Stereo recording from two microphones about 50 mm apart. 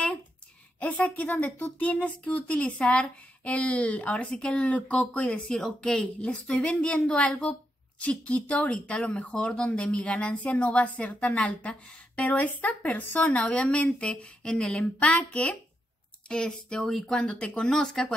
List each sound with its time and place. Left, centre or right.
0.7 s a woman's voice: left
5.6 s speech: centre
5.9 s speech: left